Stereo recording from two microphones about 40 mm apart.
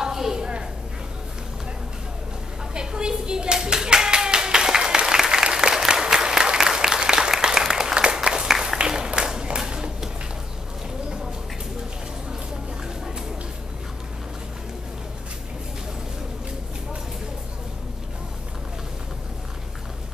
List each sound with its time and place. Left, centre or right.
0.0 s a sound: centre
2.7 s clapping: right
5.9 s applause: centre